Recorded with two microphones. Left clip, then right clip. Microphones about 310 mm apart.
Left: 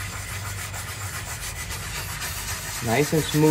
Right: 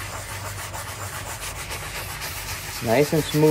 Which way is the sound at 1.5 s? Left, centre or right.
Centre.